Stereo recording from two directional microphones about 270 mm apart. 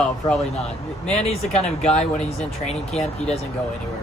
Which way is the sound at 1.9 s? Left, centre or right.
Left.